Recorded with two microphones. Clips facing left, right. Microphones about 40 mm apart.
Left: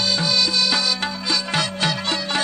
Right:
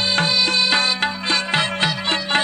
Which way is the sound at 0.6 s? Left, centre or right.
Right.